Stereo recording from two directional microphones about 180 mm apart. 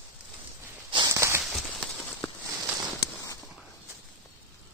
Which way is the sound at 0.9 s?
20° right (ahead or behind).